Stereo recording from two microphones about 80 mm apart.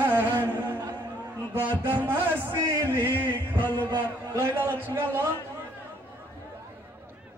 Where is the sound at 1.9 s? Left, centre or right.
Right.